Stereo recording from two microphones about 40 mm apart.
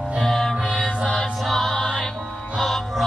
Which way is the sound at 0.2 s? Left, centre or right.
Centre.